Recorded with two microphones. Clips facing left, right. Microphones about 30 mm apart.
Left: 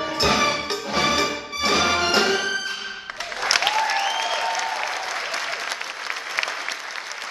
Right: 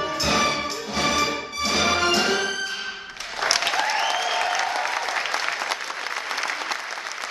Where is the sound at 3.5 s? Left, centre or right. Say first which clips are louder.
Left 2 dB; centre.